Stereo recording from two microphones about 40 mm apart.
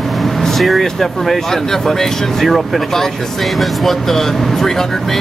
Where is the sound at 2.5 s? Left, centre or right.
Centre.